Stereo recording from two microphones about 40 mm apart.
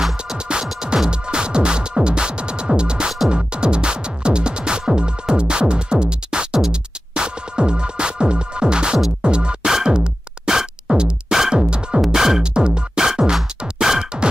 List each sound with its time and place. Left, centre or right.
0.5 s music: right
11.0 s music: right
11.3 s music: centre
12.5 s music: right